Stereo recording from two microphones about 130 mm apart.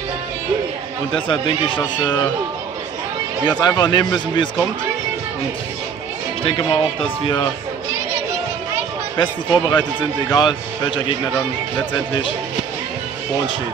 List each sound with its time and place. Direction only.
1.2 s speech: 40° left (ahead or behind)
3.4 s speech: 30° left (ahead or behind)
6.4 s speech: 45° left (ahead or behind)
9.1 s speech: 35° left (ahead or behind)